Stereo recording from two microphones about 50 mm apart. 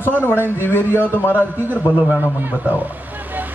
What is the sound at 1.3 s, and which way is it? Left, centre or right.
A man's voice, right.